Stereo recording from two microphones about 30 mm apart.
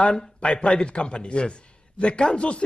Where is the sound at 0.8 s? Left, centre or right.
Left.